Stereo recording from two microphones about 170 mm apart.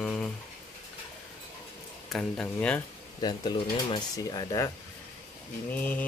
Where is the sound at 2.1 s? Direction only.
5° left (ahead or behind).